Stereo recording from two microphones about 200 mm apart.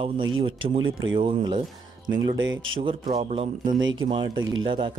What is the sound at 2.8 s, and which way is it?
Speech, 25° right (ahead or behind).